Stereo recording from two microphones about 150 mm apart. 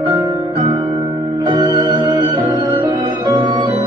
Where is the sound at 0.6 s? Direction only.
30° right (ahead or behind).